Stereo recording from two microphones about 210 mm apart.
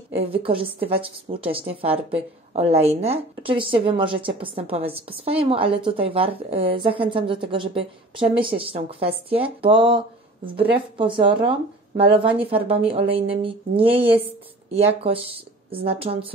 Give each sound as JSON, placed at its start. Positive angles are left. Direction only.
{"t": 0.1, "sound": "a woman's voice", "side_deg": -25}